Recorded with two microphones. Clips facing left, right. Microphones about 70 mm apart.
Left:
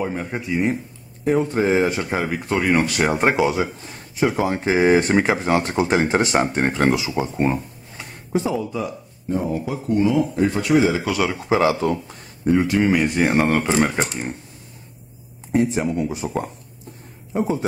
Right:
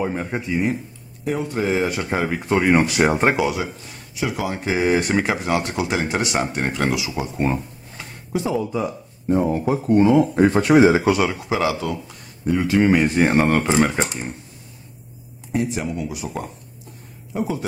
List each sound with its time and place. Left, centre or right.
0.0 s speech: centre
1.2 s speech: left
2.0 s speech: centre
3.3 s speech: left
5.1 s speech: centre
5.4 s speech: left
7.4 s a sound: centre
8.6 s speech: right
9.5 s speech: right
11.3 s speech: left
12.7 s speech: centre
13.9 s speech: centre
15.5 s speech: left
17.3 s speech: left